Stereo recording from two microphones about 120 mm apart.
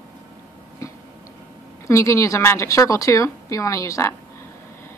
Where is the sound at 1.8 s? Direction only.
25° left (ahead or behind).